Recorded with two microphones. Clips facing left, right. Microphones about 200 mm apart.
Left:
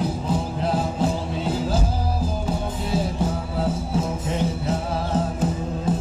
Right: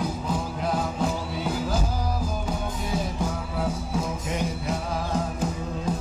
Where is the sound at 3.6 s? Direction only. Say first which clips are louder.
Left 3 dB; 25° left (ahead or behind).